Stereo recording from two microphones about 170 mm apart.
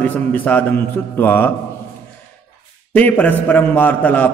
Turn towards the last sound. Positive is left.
turn(degrees=10)  # may be behind; listen again after turning